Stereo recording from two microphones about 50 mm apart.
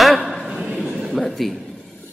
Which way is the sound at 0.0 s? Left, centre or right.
Centre.